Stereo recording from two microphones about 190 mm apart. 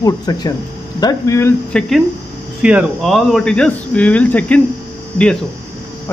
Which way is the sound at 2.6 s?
5° right (ahead or behind).